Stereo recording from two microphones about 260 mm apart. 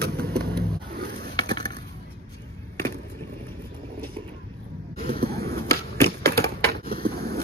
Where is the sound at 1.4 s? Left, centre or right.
Centre.